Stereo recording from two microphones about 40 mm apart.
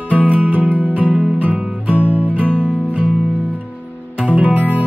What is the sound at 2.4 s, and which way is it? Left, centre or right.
Music, left.